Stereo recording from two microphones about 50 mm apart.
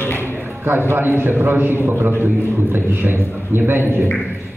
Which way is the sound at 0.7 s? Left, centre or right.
Right.